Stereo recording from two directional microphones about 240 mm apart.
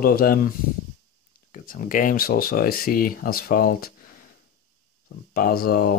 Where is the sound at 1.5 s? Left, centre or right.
Left.